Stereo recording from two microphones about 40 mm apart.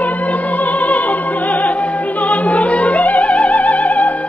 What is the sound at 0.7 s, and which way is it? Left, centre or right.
Opera, left.